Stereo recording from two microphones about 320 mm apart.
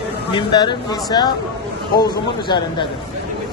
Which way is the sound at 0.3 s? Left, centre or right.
Centre.